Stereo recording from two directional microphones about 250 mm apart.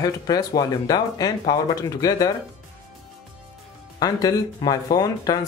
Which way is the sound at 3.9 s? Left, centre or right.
Centre.